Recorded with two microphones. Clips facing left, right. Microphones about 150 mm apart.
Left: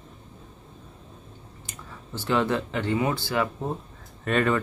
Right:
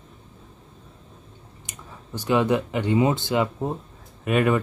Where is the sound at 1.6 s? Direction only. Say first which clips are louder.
Even; 15° right (ahead or behind).